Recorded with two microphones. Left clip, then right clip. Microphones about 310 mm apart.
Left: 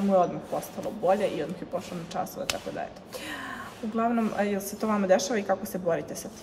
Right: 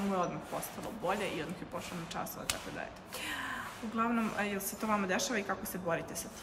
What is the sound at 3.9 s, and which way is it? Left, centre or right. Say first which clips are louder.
Speech: left 7 dB; centre.